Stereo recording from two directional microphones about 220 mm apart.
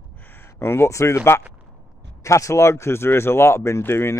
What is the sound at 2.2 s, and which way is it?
Speech, 15° left (ahead or behind).